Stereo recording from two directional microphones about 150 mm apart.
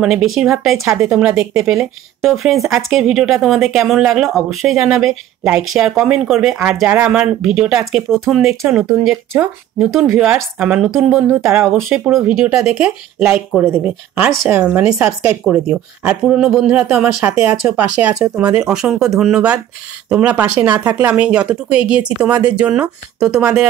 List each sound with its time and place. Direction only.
0.0 s speech: 5° right (ahead or behind)
8.6 s speech: 15° right (ahead or behind)
11.1 s speech: 15° right (ahead or behind)
11.9 s speech: 5° right (ahead or behind)